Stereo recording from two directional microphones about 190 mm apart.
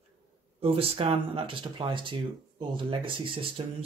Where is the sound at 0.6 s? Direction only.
30° right (ahead or behind).